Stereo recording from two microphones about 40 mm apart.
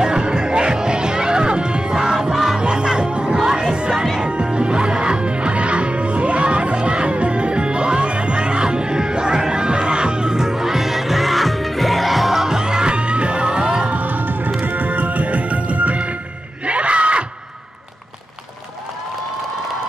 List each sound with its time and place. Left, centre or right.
0.0 s music: centre
2.3 s music: centre
2.6 s music: right
3.3 s music: centre
13.8 s music: right
16.6 s crowd: right